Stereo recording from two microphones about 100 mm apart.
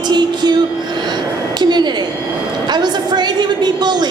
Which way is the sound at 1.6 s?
45° right (ahead or behind).